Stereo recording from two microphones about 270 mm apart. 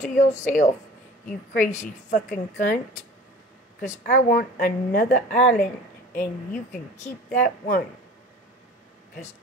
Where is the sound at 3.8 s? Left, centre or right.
Left.